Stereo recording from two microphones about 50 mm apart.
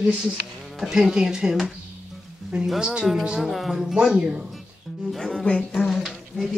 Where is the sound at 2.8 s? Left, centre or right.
Centre.